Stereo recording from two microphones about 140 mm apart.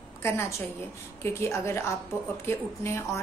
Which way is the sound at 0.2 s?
20° left (ahead or behind).